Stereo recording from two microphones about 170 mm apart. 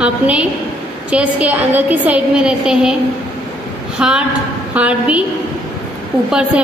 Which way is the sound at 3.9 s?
5° right (ahead or behind).